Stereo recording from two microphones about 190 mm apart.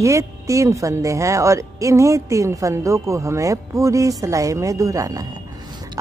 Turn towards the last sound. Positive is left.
turn(degrees=-20)  # may be behind; listen again after turning